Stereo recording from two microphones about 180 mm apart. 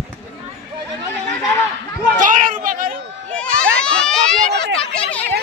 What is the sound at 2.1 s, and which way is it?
Children playing, 45° right (ahead or behind).